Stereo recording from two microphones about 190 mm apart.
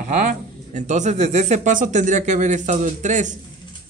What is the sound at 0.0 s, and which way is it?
Speech, 40° right (ahead or behind).